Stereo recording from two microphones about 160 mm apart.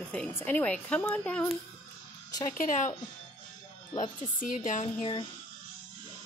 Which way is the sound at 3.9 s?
30° left (ahead or behind).